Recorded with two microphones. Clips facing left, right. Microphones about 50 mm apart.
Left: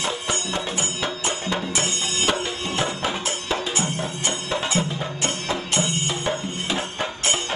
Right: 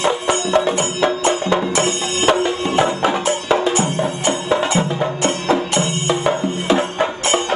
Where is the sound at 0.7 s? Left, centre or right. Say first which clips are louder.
Right 9 dB; right.